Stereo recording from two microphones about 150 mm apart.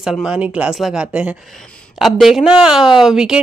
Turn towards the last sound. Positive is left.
turn(degrees=-5)  # may be behind; listen again after turning